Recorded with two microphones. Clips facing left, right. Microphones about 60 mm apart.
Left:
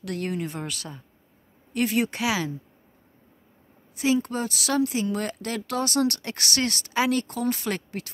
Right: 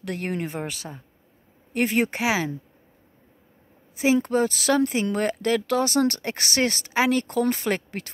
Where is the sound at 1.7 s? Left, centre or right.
Right.